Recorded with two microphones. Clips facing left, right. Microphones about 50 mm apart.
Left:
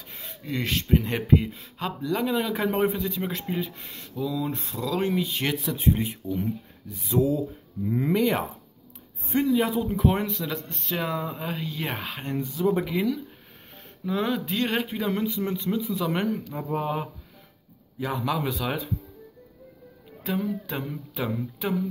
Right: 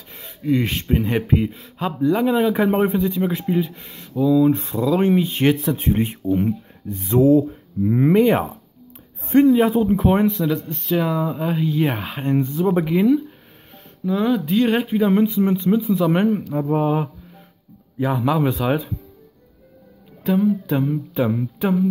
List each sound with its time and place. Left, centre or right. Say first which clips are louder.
0.1 s a sound: right 7 dB; centre
0.5 s speech: right 5 dB; right
2.3 s speech: right 8 dB; right
3.0 s speech: right 9 dB; centre
4.5 s speech: right 11 dB; right
5.8 s speech: right 4 dB; right
9.2 s speech: right 10 dB; right
9.6 s speech: right 7 dB; right
10.3 s speech: right 9 dB; centre
14.0 s speech: right 7 dB; centre
14.9 s speech: right 10 dB; right
16.7 s speech: right 7 dB; centre
20.2 s speech: right 10 dB; centre